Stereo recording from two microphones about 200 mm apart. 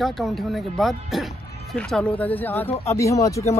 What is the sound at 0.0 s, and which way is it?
Speech, centre (ahead or behind).